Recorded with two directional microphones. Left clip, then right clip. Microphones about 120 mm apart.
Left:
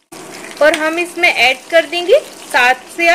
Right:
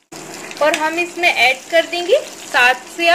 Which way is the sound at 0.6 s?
50° left (ahead or behind).